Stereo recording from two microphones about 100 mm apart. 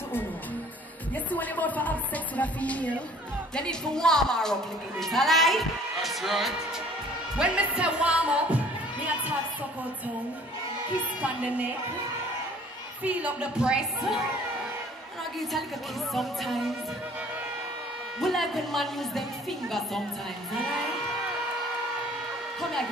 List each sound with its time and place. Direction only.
1.1 s a woman's voice: 15° left (ahead or behind); by 6.5 s centre (ahead or behind)
7.3 s music: 10° right (ahead or behind)
11.1 s speech: 15° right (ahead or behind)
13.0 s speech: 15° right (ahead or behind)
16.1 s a woman's voice: centre (ahead or behind)
18.2 s a woman's voice: centre (ahead or behind)
20.5 s a woman's voice: centre (ahead or behind)
22.6 s a woman's voice: 5° left (ahead or behind)